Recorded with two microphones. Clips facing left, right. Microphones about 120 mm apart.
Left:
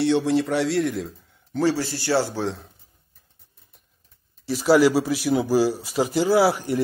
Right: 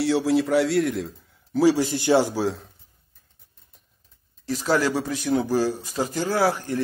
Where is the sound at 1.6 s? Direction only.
15° right (ahead or behind).